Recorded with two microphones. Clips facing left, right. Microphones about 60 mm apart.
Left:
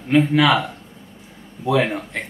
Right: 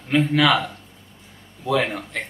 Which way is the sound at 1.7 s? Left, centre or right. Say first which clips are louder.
Left 3 dB; centre.